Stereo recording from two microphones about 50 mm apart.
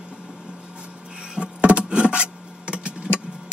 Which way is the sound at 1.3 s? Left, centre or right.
Right.